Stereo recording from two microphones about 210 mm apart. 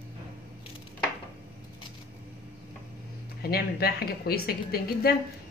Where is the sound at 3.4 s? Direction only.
50° left (ahead or behind).